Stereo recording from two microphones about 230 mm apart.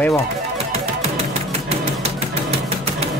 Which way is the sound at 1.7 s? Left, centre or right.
Right.